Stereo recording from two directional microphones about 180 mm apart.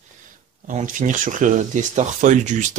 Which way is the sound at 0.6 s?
45° right (ahead or behind).